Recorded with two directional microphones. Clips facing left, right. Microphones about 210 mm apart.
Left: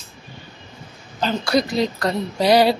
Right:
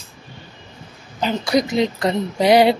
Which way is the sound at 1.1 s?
15° right (ahead or behind).